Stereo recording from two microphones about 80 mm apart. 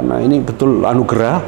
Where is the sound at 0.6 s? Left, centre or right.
Right.